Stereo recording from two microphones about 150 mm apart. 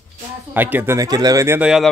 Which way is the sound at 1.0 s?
25° right (ahead or behind).